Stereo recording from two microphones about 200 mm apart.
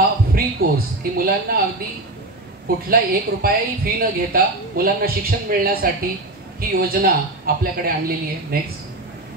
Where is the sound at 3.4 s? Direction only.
50° right (ahead or behind).